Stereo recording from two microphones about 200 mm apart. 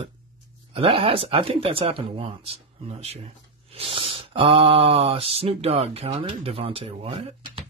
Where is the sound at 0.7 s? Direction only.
25° right (ahead or behind).